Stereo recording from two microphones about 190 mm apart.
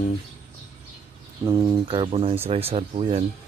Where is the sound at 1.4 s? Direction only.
15° right (ahead or behind); by 3.3 s 30° right (ahead or behind).